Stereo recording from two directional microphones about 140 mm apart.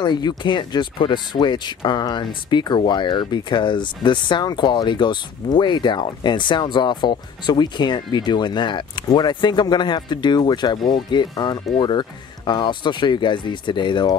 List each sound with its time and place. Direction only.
0.0 s speech: 30° left (ahead or behind)